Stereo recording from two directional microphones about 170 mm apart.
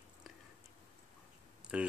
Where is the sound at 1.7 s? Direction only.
5° right (ahead or behind).